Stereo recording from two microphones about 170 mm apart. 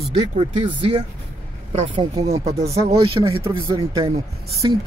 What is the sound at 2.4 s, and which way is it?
Speech, 40° right (ahead or behind).